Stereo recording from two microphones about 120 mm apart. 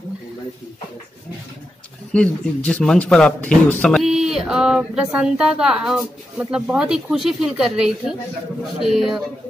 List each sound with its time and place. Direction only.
2.1 s a man's voice: 10° left (ahead or behind)
3.8 s speech: centre (ahead or behind)